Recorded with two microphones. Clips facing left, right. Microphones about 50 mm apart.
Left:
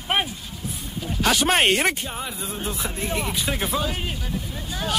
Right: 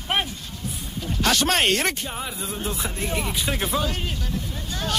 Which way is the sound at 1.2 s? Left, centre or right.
Centre.